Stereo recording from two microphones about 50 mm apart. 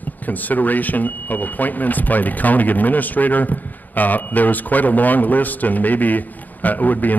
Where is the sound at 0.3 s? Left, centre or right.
Left.